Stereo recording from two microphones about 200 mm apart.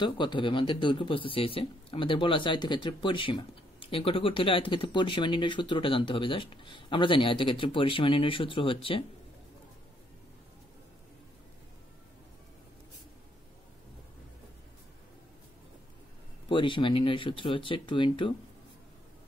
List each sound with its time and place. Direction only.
0.0 s speech: 25° left (ahead or behind)
16.4 s speech: 25° left (ahead or behind)